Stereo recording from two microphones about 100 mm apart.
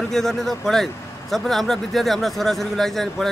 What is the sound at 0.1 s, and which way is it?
Speech, 5° left (ahead or behind).